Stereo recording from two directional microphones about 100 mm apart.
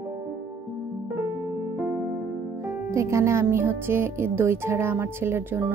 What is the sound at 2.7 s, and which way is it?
Music, 30° right (ahead or behind).